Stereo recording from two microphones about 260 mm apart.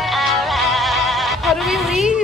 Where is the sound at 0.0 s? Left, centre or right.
Centre.